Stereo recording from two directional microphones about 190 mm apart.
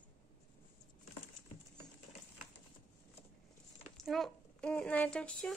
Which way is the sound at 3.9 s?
Centre (ahead or behind).